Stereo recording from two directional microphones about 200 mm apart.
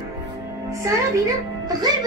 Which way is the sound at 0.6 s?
15° right (ahead or behind).